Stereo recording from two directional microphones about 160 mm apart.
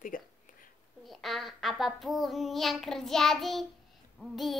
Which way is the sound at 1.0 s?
Centre (ahead or behind).